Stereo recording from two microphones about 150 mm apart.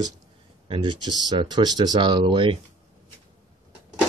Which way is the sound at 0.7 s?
30° right (ahead or behind).